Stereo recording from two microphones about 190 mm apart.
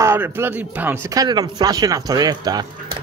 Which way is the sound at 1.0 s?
20° right (ahead or behind).